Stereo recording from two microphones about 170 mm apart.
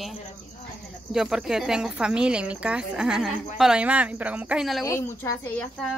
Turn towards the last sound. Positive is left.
turn(degrees=5)  # may be behind; listen again after turning